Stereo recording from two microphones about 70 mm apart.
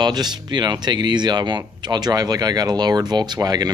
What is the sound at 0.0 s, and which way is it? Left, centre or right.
Speech, right.